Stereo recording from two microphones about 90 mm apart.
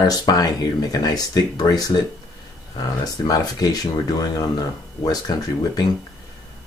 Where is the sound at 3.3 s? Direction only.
45° left (ahead or behind).